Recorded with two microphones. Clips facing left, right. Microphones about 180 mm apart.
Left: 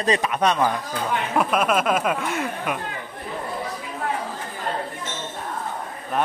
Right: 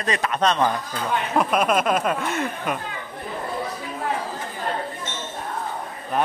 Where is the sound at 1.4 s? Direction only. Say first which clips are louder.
Even; centre (ahead or behind).